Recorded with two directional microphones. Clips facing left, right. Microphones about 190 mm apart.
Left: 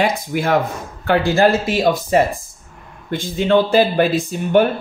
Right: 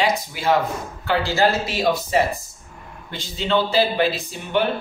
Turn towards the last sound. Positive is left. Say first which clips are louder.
# left 8 dB
turn(degrees=45)  # may be behind; listen again after turning